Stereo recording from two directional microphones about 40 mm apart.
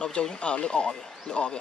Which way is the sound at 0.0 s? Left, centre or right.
Left.